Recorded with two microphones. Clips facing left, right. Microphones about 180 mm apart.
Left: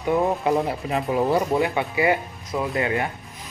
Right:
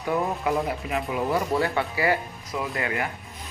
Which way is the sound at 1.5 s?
20° left (ahead or behind).